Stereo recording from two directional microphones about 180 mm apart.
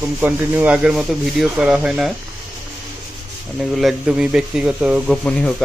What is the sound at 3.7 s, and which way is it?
Speech, 5° right (ahead or behind).